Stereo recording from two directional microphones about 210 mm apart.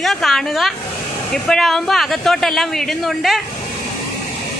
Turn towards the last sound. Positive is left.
turn(degrees=0)  # may be behind; listen again after turning